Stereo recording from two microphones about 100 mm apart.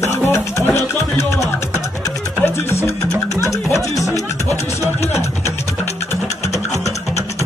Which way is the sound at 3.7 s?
30° left (ahead or behind).